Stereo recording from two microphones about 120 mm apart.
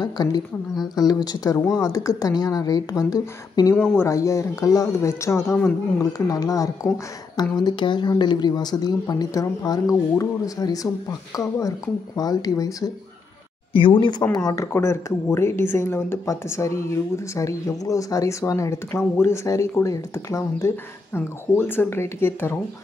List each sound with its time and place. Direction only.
0.0 s speech: 35° left (ahead or behind)
13.7 s speech: 45° left (ahead or behind)
14.3 s speech: 30° left (ahead or behind)